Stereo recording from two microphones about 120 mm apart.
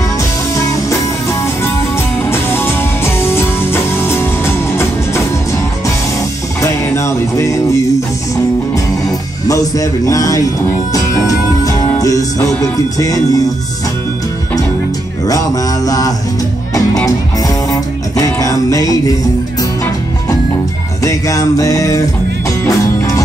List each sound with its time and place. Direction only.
0.6 s music: 25° left (ahead or behind)
2.2 s music: 20° left (ahead or behind)
6.6 s music: 25° left (ahead or behind)
9.5 s speech: 30° left (ahead or behind)
12.7 s music: 30° left (ahead or behind)
15.2 s music: 30° left (ahead or behind)
21.0 s music: 25° left (ahead or behind)